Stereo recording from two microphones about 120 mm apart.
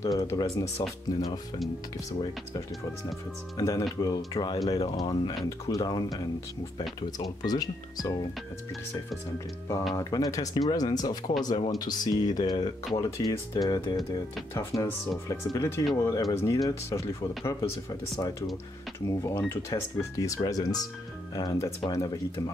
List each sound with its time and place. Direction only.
0.0 s speech: 30° left (ahead or behind)
3.5 s speech: 30° left (ahead or behind)
9.9 s speech: 30° left (ahead or behind)
14.5 s speech: 30° left (ahead or behind)
18.9 s speech: 20° left (ahead or behind)